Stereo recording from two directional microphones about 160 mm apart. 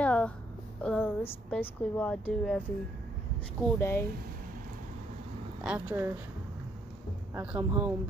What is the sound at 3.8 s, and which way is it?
Speech, 15° left (ahead or behind).